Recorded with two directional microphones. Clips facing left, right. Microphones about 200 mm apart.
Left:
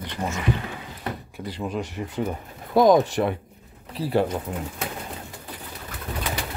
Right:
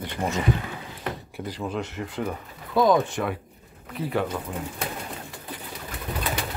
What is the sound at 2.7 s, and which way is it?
Speech, 40° left (ahead or behind).